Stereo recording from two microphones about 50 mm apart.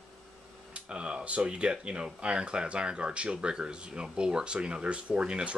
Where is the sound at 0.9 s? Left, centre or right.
Centre.